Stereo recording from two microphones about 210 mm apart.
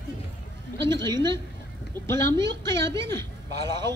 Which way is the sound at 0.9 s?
20° right (ahead or behind).